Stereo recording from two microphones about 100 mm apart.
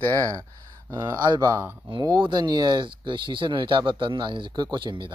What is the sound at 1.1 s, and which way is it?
A man's voice, 45° right (ahead or behind).